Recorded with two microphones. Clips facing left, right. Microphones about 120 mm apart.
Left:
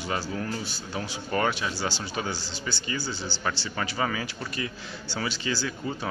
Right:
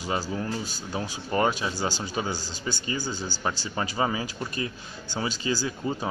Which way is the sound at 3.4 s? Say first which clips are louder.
Right 1 dB; 20° right (ahead or behind).